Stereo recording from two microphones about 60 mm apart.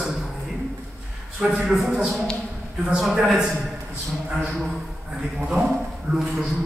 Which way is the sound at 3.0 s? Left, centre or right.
Centre.